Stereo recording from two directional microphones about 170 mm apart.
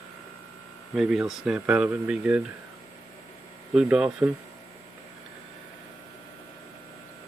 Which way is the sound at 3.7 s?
5° right (ahead or behind).